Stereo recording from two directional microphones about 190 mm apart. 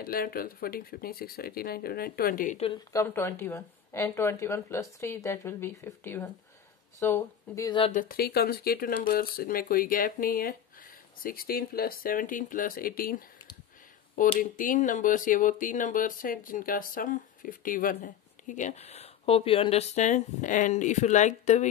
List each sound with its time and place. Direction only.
0.0 s speech: 50° left (ahead or behind)
2.6 s a woman's voice: 20° left (ahead or behind)
7.8 s speech: 40° left (ahead or behind)
14.4 s speech: 45° left (ahead or behind)